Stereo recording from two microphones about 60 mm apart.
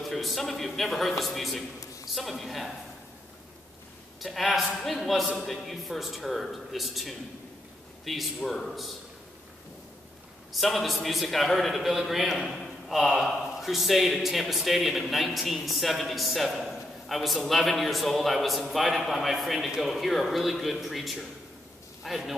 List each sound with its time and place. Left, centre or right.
0.0 s a man's voice: centre
4.2 s a man's voice: centre
10.5 s a man's voice: centre